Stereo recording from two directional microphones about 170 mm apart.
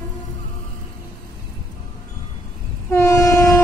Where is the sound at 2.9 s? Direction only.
15° left (ahead or behind).